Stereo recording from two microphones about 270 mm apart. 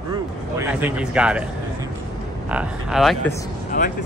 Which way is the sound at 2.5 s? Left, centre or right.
Centre.